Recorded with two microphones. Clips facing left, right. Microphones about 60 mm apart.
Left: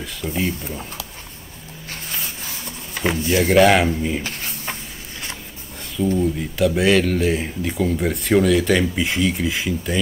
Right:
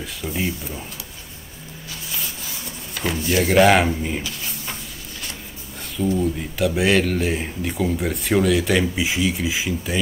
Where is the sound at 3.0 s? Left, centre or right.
Left.